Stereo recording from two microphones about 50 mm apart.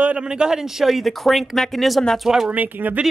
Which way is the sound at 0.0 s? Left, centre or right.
Right.